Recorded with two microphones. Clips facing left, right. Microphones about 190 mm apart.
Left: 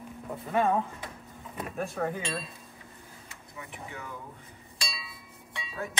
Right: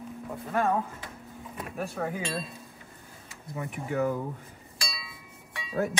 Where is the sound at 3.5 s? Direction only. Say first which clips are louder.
Right 11 dB; 50° right (ahead or behind).